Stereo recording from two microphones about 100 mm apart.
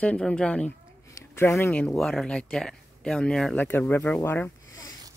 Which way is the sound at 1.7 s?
15° left (ahead or behind).